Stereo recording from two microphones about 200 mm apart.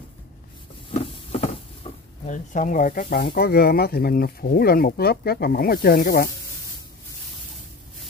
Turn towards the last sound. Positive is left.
turn(degrees=50)  # may be behind; listen again after turning